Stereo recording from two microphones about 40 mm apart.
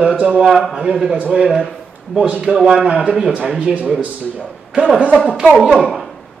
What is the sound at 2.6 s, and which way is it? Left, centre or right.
Speech, centre.